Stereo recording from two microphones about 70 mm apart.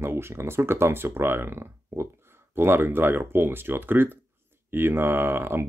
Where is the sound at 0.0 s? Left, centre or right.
Right.